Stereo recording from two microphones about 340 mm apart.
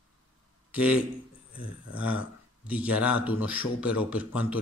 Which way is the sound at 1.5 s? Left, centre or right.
Left.